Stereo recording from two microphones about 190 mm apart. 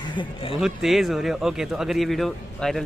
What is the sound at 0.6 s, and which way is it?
A man's voice, centre (ahead or behind).